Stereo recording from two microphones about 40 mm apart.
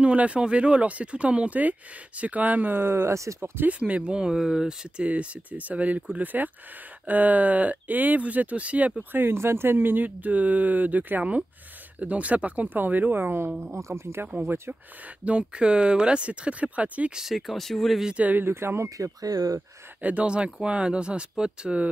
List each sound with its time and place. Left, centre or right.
0.0 s speech: right
2.8 s speech: right
3.8 s speech: right
5.0 s speech: right
9.1 s speech: right
12.6 s speech: right
13.2 s speech: right
14.3 s speech: right
15.2 s speech: right
17.3 s speech: centre
18.1 s speech: right
18.4 s speech: right
20.0 s speech: right
20.2 s speech: right